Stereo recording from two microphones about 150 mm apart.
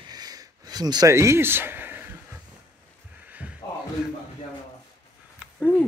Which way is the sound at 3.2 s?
10° right (ahead or behind).